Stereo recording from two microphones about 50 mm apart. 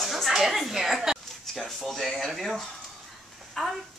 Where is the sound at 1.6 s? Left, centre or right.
Centre.